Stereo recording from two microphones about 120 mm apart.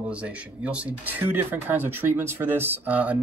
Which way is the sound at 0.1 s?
10° right (ahead or behind).